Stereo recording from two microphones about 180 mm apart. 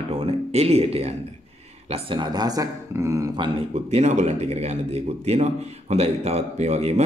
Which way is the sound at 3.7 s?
40° right (ahead or behind).